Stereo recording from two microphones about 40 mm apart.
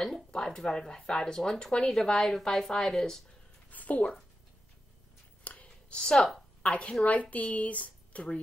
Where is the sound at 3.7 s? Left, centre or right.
Left.